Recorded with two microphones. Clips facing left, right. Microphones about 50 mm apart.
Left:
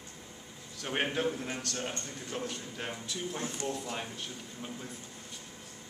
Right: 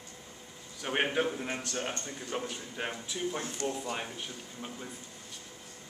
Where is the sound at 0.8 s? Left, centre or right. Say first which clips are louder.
Right 2 dB; centre.